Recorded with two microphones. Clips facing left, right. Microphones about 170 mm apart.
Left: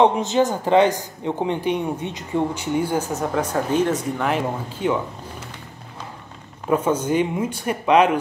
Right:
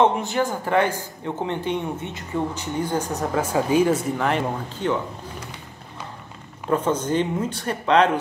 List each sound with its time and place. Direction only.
0.0 s speech: 20° left (ahead or behind)
3.3 s speech: 5° right (ahead or behind)
6.7 s speech: 10° left (ahead or behind)